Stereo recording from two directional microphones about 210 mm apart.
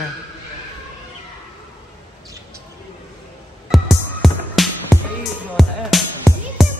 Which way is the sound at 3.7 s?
Centre (ahead or behind).